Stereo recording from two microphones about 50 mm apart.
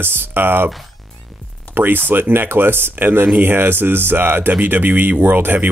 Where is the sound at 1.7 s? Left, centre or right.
Right.